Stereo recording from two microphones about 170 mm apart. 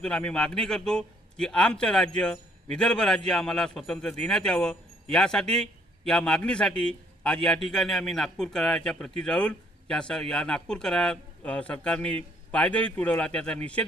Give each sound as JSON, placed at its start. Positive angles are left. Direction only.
{"t": 0.0, "sound": "a man's voice", "side_deg": 5}